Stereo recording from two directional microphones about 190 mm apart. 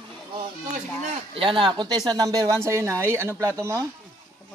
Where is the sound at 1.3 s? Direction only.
25° right (ahead or behind).